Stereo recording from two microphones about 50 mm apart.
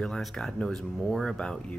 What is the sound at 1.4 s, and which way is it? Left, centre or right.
Speech, centre.